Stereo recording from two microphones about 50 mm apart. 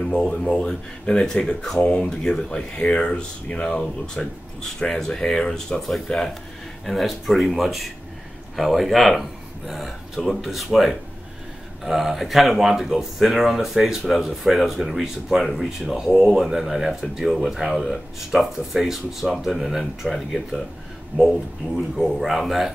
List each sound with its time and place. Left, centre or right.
0.0 s speech: centre
1.8 s speech: left
2.0 s speech: centre
5.9 s speech: centre